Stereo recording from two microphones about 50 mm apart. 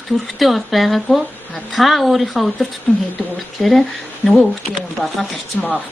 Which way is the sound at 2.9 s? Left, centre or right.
Centre.